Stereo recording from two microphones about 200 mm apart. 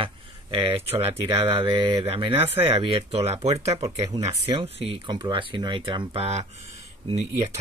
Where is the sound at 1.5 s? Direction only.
25° right (ahead or behind).